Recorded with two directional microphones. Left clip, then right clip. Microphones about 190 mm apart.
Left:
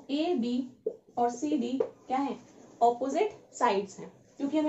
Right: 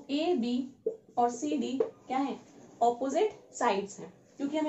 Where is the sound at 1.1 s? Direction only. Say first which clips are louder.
Even; 10° left (ahead or behind).